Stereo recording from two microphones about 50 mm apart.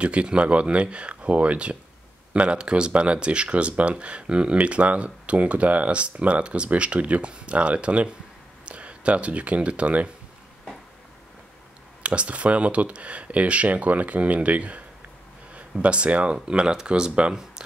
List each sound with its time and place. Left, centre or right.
0.0 s speech: right
12.0 s speech: right
15.8 s speech: right